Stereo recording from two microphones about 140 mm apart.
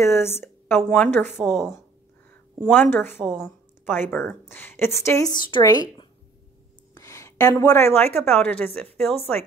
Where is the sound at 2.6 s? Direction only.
15° left (ahead or behind); by 6.0 s 30° left (ahead or behind).